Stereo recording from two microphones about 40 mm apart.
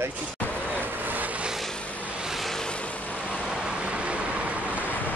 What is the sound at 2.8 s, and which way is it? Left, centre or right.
Vehicle, left.